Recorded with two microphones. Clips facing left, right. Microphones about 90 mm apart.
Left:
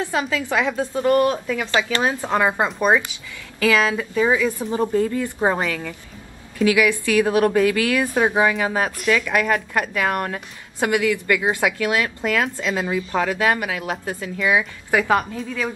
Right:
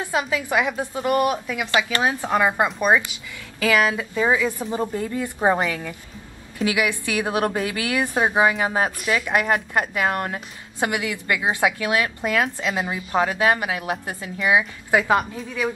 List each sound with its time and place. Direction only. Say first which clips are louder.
0.0 s a woman's voice: left 1 dB; 15° right (ahead or behind)